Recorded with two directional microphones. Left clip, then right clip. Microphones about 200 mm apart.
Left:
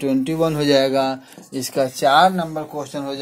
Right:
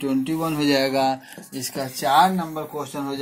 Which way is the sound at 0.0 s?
40° left (ahead or behind).